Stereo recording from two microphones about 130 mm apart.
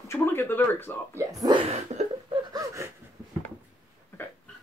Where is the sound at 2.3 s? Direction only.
30° right (ahead or behind).